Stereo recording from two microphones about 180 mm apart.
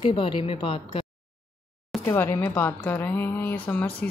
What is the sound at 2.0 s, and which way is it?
A woman's voice, 15° left (ahead or behind).